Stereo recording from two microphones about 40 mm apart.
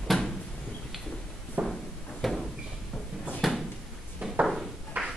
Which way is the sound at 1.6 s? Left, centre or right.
Right.